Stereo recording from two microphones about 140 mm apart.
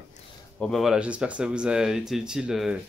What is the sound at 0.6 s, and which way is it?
Speech, centre (ahead or behind).